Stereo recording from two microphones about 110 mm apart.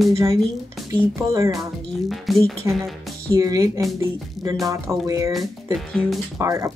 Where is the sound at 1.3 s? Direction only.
30° right (ahead or behind).